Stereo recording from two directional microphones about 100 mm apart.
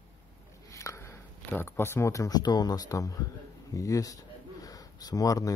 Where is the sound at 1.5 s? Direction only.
20° left (ahead or behind).